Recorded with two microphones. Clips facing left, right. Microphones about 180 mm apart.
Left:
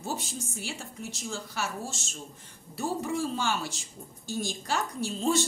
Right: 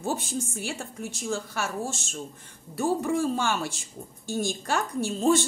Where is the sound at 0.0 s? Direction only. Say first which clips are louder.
Right 6 dB; 55° right (ahead or behind).